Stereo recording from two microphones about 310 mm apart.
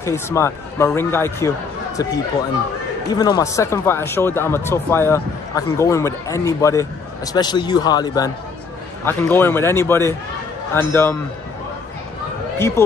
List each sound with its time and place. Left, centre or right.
0.0 s speech: centre
3.1 s speech: centre
12.5 s speech: centre